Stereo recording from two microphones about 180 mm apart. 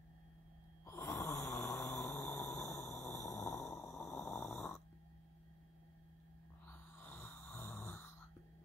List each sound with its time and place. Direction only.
0.8 s snoring: 15° left (ahead or behind)
1.5 s vehicle: 15° left (ahead or behind)
4.4 s snoring: centre (ahead or behind)
6.7 s snoring: 10° left (ahead or behind)